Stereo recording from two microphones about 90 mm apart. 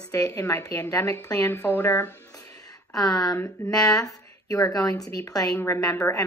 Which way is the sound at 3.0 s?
40° left (ahead or behind).